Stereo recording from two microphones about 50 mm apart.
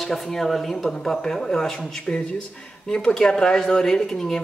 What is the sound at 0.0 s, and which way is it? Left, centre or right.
A man's voice, centre.